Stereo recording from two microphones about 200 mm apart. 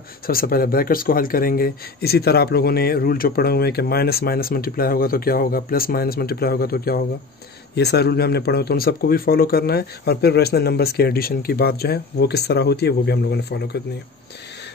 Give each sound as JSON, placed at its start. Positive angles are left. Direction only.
{"t": 0.3, "sound": "speech", "side_deg": 45}